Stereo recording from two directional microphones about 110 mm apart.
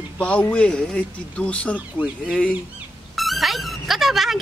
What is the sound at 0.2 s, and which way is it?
Speech, 10° left (ahead or behind).